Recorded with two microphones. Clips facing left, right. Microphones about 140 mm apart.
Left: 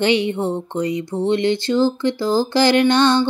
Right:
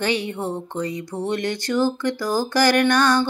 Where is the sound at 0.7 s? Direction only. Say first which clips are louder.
Left 5 dB; 15° left (ahead or behind).